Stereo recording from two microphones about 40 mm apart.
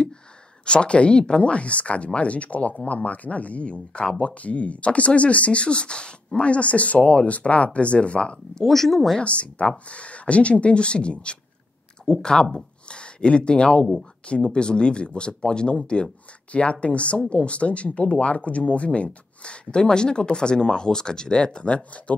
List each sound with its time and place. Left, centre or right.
0.7 s speech: left
8.6 s speech: centre
9.2 s speech: left